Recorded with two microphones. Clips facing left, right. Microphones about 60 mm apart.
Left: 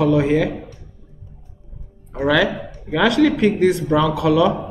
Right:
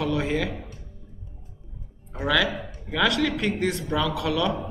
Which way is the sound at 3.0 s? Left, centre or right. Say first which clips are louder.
Left 8 dB; centre.